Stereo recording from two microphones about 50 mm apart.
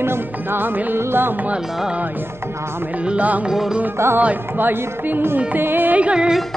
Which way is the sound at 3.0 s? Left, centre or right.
Right.